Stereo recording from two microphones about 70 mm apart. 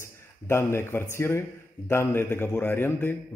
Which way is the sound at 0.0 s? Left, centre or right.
Left.